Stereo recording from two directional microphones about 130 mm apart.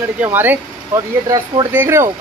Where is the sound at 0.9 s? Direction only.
30° right (ahead or behind).